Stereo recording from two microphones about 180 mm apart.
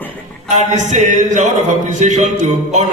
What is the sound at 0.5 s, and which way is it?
A man's voice, 40° right (ahead or behind).